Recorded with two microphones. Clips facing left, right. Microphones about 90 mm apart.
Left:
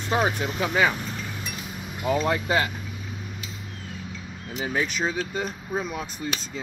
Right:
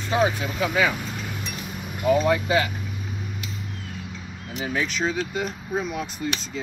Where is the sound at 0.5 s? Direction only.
35° left (ahead or behind).